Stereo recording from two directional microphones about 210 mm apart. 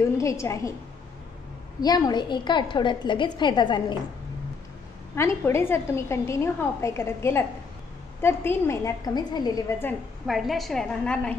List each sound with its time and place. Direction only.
0.2 s a woman's voice: 15° left (ahead or behind)
1.8 s a woman's voice: 20° left (ahead or behind)
5.1 s a woman's voice: 10° left (ahead or behind)
10.2 s a woman's voice: centre (ahead or behind)